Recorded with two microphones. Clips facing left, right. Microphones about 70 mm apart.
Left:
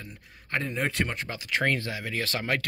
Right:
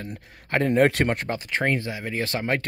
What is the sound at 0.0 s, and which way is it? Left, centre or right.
Speech, right.